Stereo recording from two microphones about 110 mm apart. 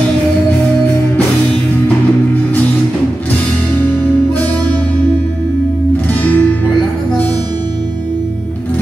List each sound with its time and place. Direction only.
6.2 s music: 15° left (ahead or behind)